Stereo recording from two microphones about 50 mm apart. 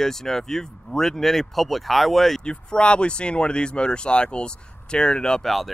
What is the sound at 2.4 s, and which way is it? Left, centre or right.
Speech, centre.